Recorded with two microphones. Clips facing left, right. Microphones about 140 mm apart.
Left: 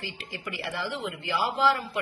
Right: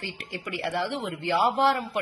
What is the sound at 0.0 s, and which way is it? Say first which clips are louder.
Speech: right 2 dB; 65° right (ahead or behind).